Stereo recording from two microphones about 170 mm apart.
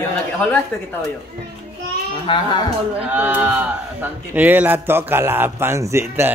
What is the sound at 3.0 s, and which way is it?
A man's voice, 10° right (ahead or behind).